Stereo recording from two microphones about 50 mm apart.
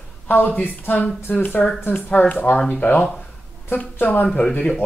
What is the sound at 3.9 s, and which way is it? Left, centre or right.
Speech, left.